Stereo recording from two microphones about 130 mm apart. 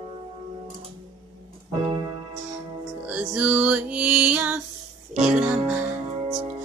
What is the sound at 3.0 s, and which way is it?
Music, 10° right (ahead or behind).